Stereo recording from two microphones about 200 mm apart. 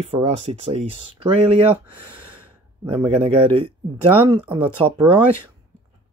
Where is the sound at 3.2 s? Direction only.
25° right (ahead or behind).